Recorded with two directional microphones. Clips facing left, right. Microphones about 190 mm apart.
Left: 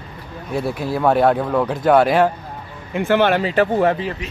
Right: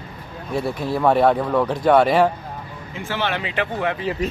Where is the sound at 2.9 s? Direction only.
60° left (ahead or behind); by 3.9 s 40° left (ahead or behind).